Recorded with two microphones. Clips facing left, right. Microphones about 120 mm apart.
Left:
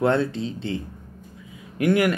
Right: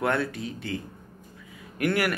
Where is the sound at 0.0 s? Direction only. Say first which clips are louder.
Left 5 dB; 25° left (ahead or behind).